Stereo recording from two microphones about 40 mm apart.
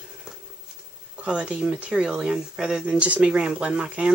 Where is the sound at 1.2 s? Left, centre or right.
Right.